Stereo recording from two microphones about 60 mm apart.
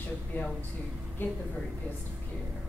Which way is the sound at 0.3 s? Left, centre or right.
Left.